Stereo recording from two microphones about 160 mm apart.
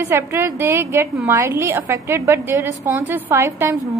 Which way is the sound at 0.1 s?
15° right (ahead or behind).